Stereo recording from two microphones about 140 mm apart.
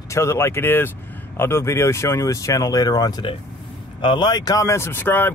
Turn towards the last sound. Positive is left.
turn(degrees=15)  # may be behind; listen again after turning